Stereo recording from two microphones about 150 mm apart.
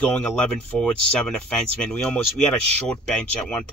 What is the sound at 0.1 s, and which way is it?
Speech, 10° left (ahead or behind).